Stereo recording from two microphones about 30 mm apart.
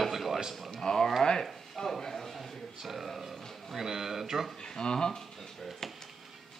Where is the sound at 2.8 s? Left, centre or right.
Centre.